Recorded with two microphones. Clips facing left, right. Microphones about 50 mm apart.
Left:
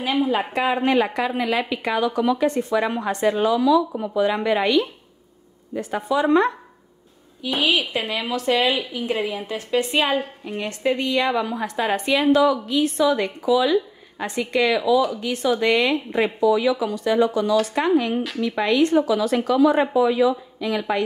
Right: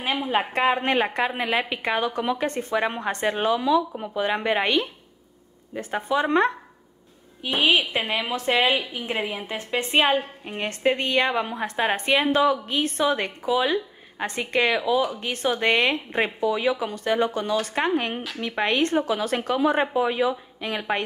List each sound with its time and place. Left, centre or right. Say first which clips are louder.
0.3 s a woman's voice: even; right
7.6 s a woman's voice: right 1 dB; right